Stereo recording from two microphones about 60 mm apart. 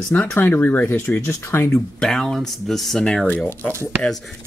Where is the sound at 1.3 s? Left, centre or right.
Left.